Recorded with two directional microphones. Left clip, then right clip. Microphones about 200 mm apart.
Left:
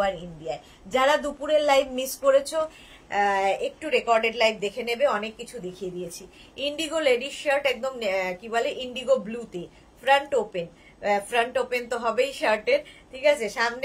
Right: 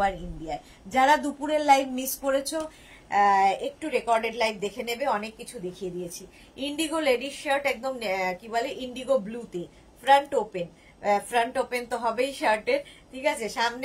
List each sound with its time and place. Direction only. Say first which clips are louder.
0.0 s a woman's voice: left 1 dB; 10° left (ahead or behind)